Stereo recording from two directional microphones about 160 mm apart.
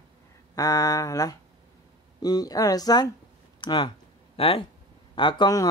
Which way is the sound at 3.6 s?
30° left (ahead or behind).